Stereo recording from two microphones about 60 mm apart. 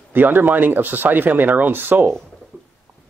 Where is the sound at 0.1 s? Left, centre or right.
Right.